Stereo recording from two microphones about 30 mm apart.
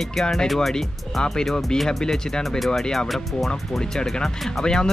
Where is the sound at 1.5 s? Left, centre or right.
Centre.